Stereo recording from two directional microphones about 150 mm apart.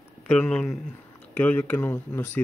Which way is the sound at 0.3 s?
5° left (ahead or behind).